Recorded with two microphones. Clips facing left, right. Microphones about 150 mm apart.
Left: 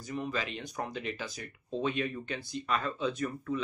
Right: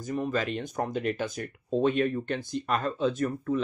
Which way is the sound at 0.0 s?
45° right (ahead or behind).